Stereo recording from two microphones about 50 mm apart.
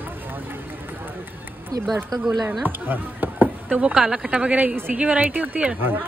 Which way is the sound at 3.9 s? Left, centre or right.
Centre.